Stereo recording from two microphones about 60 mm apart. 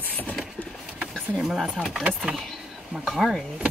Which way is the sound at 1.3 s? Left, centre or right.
Centre.